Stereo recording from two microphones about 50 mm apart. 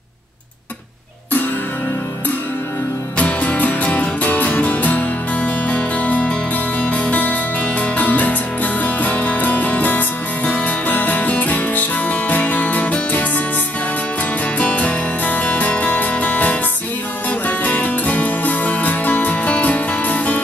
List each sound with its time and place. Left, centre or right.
3.2 s music: left
14.6 s music: left